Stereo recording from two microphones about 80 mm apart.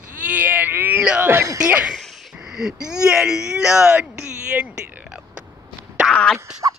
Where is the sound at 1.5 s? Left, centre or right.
Centre.